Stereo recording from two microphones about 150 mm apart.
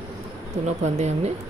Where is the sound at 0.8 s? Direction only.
45° right (ahead or behind).